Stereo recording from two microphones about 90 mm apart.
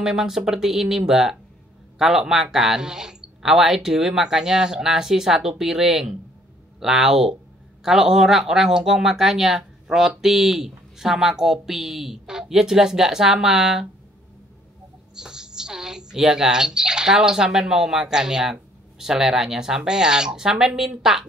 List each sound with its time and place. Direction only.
0.0 s speech: 5° right (ahead or behind)
15.1 s speech: 5° right (ahead or behind)